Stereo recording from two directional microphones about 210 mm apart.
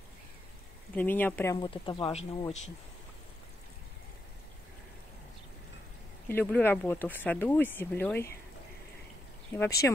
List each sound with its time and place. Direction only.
0.9 s speech: 10° left (ahead or behind)
6.2 s speech: 5° left (ahead or behind)
9.8 s speech: 10° left (ahead or behind)